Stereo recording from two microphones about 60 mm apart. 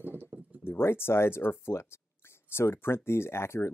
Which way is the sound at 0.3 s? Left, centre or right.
Right.